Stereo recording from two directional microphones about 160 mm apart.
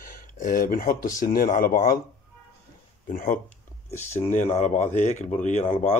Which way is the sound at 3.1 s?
60° left (ahead or behind).